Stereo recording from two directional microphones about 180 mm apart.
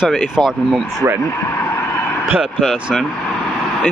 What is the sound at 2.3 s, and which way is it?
Speech, centre (ahead or behind).